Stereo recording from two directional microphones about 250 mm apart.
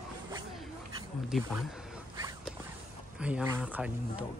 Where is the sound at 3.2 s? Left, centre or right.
Centre.